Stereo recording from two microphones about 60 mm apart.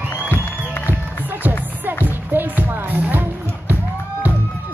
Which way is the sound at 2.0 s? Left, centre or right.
Right.